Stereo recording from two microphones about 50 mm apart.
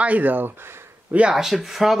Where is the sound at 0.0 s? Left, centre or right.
Right.